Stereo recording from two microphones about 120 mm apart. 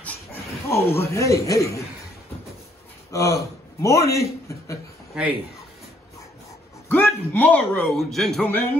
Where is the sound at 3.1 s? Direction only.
30° left (ahead or behind).